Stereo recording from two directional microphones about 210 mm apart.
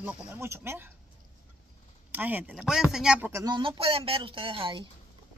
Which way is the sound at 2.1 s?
10° right (ahead or behind).